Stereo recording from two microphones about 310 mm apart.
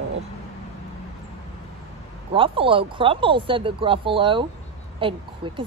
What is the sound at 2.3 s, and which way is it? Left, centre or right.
Speech, centre.